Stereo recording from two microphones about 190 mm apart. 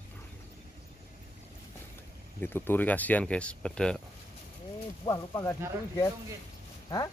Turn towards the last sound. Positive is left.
turn(degrees=20)  # may be behind; listen again after turning